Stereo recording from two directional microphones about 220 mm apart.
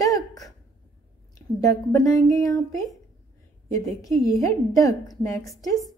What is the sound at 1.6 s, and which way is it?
Speech, 15° left (ahead or behind).